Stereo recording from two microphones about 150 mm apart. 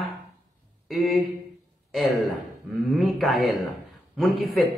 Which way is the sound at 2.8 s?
Centre (ahead or behind).